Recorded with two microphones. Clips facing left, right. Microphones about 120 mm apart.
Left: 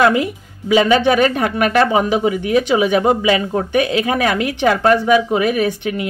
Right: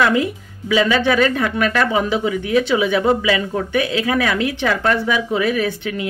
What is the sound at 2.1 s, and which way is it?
Speech, 40° left (ahead or behind).